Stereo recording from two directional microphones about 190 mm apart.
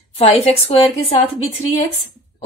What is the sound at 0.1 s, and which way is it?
A woman's voice, 30° left (ahead or behind).